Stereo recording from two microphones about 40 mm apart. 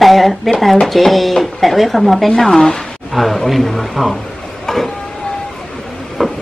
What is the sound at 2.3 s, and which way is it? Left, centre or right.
Speech, centre.